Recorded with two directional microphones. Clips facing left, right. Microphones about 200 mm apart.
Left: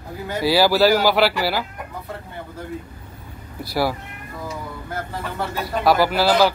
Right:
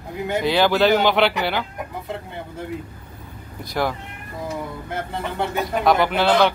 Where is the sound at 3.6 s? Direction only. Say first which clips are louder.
Left 2 dB; 5° left (ahead or behind).